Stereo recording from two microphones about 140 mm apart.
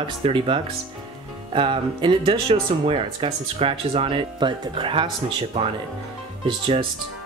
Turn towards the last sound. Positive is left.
turn(degrees=-40)  # may be behind; listen again after turning